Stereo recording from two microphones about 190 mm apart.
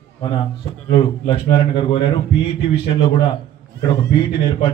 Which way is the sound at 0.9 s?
25° left (ahead or behind).